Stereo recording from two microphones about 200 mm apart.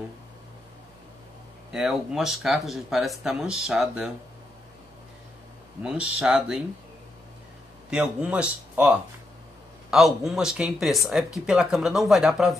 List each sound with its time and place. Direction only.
1.7 s speech: centre (ahead or behind)
5.8 s speech: 5° right (ahead or behind)
7.9 s speech: 5° right (ahead or behind)